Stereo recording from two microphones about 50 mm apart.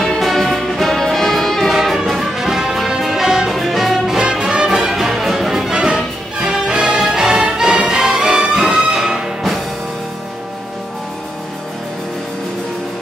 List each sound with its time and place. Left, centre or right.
0.2 s brass instrument: centre
1.8 s music: centre
4.2 s music: centre
5.8 s music: centre